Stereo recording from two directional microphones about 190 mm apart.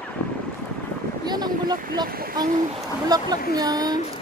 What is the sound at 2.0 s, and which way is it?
Speech, 50° right (ahead or behind).